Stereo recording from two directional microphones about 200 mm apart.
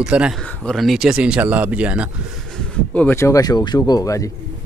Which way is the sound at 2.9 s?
10° left (ahead or behind).